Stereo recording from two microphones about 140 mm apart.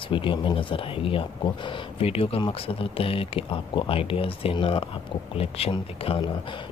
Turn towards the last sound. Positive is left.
turn(degrees=40)  # may be behind; listen again after turning